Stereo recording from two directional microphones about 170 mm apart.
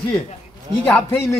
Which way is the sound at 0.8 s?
10° left (ahead or behind).